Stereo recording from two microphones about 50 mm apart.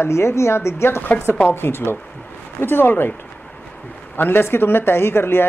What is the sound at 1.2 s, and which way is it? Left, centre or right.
Speech, left.